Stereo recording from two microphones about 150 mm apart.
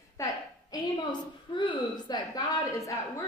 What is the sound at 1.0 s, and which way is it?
A woman's voice, 30° left (ahead or behind).